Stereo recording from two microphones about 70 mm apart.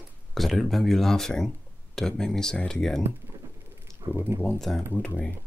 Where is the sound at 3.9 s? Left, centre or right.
Right.